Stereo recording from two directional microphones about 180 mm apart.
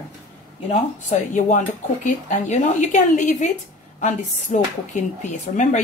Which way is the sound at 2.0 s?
40° left (ahead or behind).